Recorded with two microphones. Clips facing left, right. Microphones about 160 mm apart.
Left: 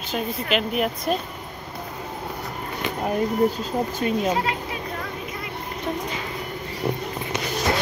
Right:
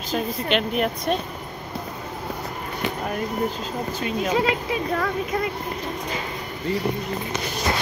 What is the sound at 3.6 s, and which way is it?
Speech, 40° left (ahead or behind).